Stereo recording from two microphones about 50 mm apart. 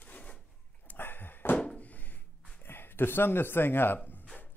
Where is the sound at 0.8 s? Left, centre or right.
Left.